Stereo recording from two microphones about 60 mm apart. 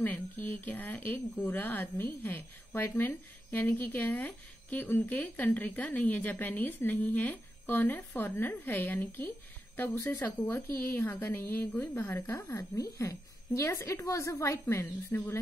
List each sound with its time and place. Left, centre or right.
0.0 s a woman's voice: left
8.1 s a woman's voice: left
8.5 s speech: left
11.9 s speech: left
12.5 s a woman's voice: left